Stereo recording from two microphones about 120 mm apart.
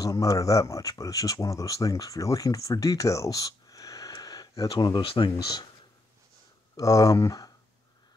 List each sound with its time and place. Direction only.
0.0 s speech: 30° left (ahead or behind)
6.8 s speech: 30° left (ahead or behind)